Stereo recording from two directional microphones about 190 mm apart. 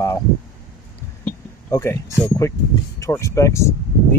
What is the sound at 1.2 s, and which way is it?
Speech, 10° left (ahead or behind).